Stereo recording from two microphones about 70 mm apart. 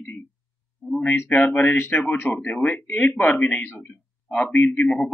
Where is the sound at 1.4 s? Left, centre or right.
Left.